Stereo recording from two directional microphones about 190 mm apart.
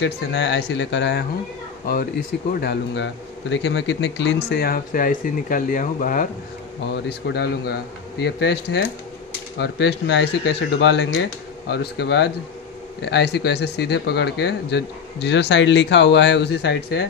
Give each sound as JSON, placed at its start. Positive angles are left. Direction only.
{"t": 0.0, "sound": "speech", "side_deg": 70}
{"t": 2.6, "sound": "speech", "side_deg": 65}
{"t": 7.1, "sound": "speech", "side_deg": 60}